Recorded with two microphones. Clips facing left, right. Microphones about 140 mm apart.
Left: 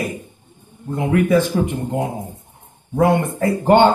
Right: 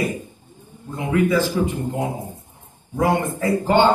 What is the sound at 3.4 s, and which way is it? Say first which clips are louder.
Speech: left 5 dB; 55° left (ahead or behind).